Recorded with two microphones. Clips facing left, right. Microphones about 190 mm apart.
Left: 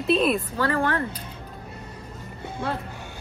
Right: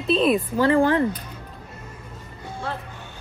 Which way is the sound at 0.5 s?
25° right (ahead or behind).